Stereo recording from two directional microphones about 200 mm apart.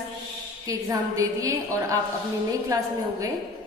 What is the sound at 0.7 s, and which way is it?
A woman's voice, 15° right (ahead or behind).